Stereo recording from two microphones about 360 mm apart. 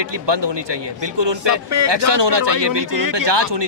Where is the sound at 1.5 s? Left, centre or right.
Right.